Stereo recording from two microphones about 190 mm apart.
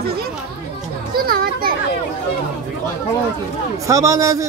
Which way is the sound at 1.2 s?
50° right (ahead or behind).